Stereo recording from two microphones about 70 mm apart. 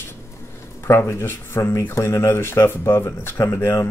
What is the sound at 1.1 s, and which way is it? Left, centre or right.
Speech, left.